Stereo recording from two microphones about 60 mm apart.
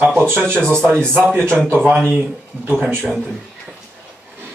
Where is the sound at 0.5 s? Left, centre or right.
Centre.